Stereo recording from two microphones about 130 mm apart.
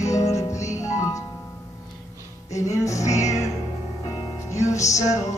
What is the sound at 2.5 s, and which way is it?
Music, 25° left (ahead or behind).